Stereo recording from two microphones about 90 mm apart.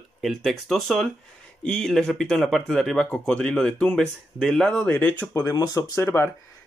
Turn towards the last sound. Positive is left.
turn(degrees=30)  # may be behind; listen again after turning